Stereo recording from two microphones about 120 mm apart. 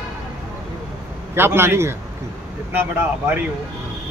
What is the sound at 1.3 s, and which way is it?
Speech, 20° right (ahead or behind).